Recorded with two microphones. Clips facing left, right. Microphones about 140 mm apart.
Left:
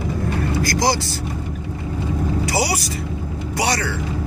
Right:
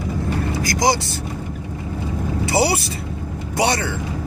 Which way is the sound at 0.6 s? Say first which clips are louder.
Right 1 dB; 20° right (ahead or behind).